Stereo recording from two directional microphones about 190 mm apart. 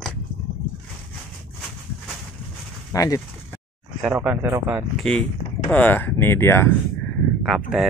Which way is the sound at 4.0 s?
5° right (ahead or behind).